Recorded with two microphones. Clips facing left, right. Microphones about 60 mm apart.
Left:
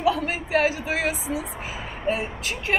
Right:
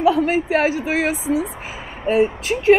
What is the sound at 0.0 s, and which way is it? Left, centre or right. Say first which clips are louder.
A woman's voice: right 7 dB; right.